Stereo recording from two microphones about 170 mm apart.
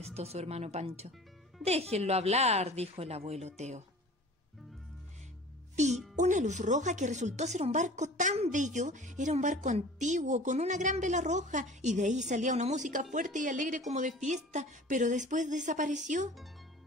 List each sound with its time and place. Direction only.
0.0 s a woman's voice: 40° right (ahead or behind)
6.1 s speech: 45° right (ahead or behind)